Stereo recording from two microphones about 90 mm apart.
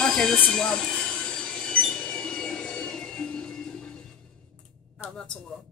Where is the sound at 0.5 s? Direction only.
5° left (ahead or behind).